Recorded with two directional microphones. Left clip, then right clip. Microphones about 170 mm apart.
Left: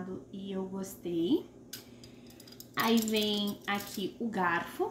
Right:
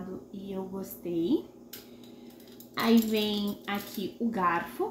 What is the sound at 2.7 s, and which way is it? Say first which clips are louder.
A woman's voice: right 3 dB; 10° left (ahead or behind).